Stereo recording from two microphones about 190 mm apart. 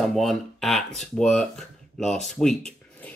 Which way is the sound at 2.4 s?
5° left (ahead or behind).